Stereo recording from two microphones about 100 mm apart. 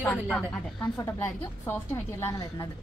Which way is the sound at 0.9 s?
25° left (ahead or behind).